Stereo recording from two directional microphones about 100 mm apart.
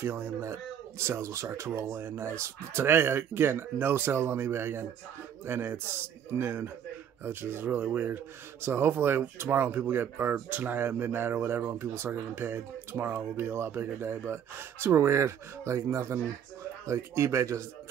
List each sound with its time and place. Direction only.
0.0 s speech: 25° right (ahead or behind)